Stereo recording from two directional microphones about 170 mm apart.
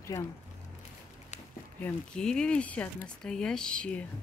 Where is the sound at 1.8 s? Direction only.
5° left (ahead or behind).